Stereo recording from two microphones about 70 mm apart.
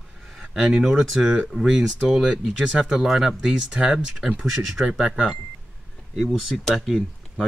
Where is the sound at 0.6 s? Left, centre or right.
Centre.